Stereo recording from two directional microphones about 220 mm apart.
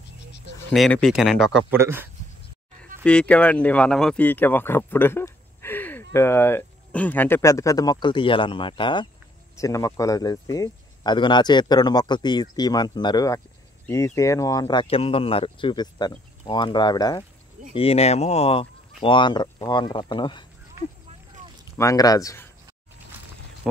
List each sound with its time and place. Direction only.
0.7 s speech: 5° left (ahead or behind)
3.0 s speech: 5° left (ahead or behind); by 20.4 s 20° left (ahead or behind)
21.7 s speech: 15° left (ahead or behind)